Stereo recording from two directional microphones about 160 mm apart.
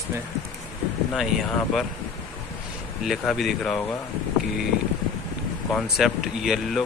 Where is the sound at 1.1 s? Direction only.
Centre (ahead or behind).